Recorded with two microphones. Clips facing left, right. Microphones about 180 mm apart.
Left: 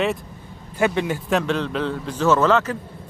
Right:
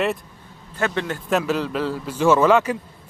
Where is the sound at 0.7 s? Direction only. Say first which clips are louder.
Left 3 dB; 10° left (ahead or behind).